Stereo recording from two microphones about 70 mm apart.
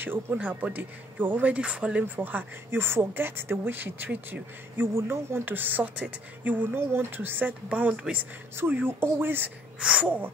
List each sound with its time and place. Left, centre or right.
0.0 s speech: right
2.1 s speech: right
9.8 s speech: centre